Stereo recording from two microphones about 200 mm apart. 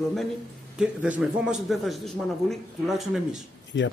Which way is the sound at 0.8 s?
5° right (ahead or behind).